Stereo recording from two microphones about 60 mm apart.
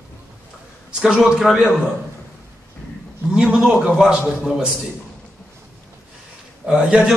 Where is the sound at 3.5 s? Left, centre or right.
Centre.